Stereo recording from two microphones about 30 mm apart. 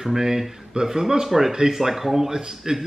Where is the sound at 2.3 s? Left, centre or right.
Right.